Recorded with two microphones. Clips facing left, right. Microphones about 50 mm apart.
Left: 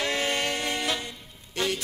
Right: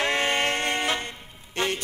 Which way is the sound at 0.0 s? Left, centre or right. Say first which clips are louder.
Right 3 dB; right.